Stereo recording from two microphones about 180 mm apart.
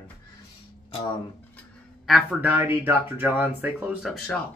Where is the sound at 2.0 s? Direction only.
Centre (ahead or behind).